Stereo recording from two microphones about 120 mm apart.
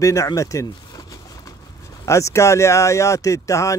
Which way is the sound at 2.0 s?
25° left (ahead or behind).